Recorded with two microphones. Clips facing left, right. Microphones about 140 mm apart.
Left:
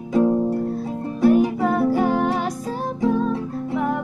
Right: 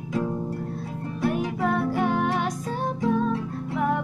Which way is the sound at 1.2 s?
5° left (ahead or behind).